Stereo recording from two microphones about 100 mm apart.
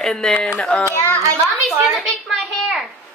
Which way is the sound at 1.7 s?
5° right (ahead or behind).